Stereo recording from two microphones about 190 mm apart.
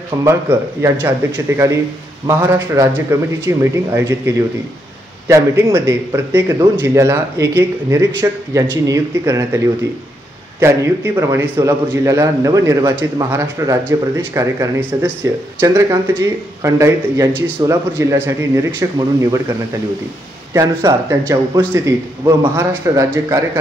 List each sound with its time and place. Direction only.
0.2 s a man's voice: 15° right (ahead or behind)
10.6 s a man's voice: 15° right (ahead or behind)
20.5 s a man's voice: 15° right (ahead or behind)